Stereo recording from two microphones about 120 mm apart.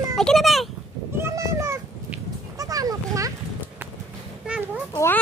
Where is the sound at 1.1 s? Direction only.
25° right (ahead or behind).